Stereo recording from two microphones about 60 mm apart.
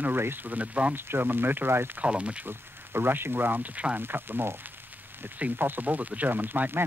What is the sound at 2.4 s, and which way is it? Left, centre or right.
Speech, right.